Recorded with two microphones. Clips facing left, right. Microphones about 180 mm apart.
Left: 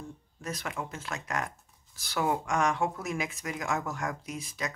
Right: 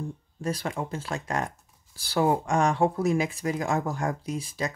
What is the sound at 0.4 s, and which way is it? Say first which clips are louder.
Speech: right 6 dB; 30° right (ahead or behind).